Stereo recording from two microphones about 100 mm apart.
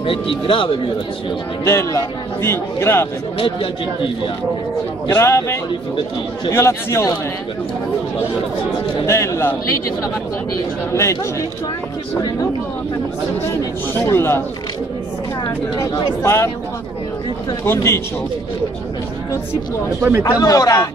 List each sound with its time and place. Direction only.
0.0 s speech: 60° left (ahead or behind)
1.6 s a man's voice: 25° left (ahead or behind)
3.3 s speech: 60° left (ahead or behind)
5.0 s a man's voice: 30° left (ahead or behind)
9.0 s a man's voice: 30° left (ahead or behind)
10.9 s a man's voice: 30° left (ahead or behind)
13.9 s a man's voice: 25° left (ahead or behind)
15.4 s speech: 45° left (ahead or behind)
16.2 s a man's voice: 25° left (ahead or behind)
17.6 s a man's voice: 25° left (ahead or behind)
20.2 s a man's voice: 40° left (ahead or behind)